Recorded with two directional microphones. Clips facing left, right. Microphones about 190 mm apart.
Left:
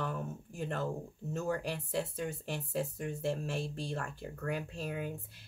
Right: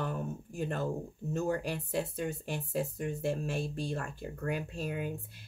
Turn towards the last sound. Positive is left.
turn(degrees=-15)  # may be behind; listen again after turning